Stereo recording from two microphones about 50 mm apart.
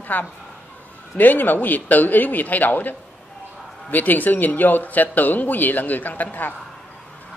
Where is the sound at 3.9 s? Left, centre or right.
Left.